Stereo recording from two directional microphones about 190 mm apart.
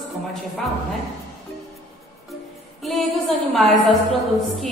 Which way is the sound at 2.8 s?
Centre (ahead or behind).